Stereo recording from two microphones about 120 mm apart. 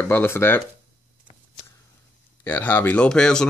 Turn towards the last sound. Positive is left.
turn(degrees=5)  # may be behind; listen again after turning